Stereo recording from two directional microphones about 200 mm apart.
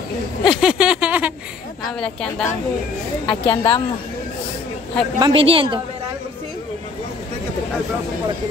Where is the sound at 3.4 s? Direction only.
25° left (ahead or behind).